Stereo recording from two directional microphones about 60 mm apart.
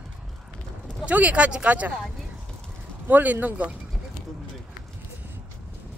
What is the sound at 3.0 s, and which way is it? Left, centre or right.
Speech, right.